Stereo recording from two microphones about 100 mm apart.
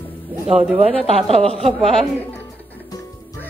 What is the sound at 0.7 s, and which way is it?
Speech, 90° right.